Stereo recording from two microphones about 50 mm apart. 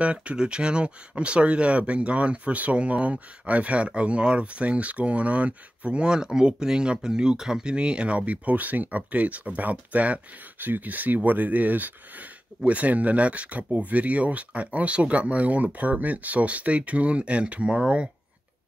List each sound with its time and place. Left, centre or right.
0.0 s speech: right